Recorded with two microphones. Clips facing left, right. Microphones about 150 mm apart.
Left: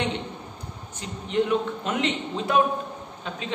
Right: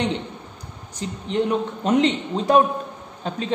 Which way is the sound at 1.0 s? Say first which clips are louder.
Right 2 dB; 35° right (ahead or behind).